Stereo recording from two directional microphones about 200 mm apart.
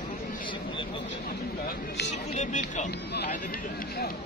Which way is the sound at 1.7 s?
55° left (ahead or behind).